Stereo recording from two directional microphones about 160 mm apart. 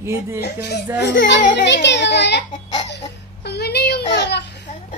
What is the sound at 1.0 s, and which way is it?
A child's voice, 90° left.